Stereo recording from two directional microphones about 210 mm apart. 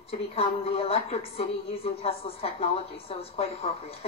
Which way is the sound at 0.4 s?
25° left (ahead or behind).